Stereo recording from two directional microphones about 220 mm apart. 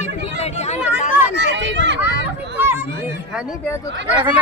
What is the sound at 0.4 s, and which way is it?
Chatter, 30° left (ahead or behind).